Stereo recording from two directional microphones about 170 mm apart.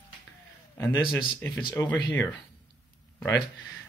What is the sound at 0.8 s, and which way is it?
Speech, 20° left (ahead or behind).